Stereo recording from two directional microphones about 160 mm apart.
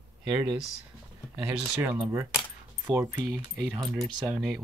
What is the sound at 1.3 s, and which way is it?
Speech, 5° right (ahead or behind).